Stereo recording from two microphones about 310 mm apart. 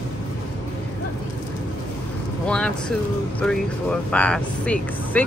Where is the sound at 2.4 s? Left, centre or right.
Centre.